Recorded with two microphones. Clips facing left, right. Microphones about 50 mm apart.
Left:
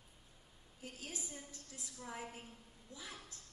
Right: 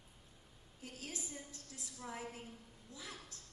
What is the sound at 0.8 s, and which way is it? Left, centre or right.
Speech, left.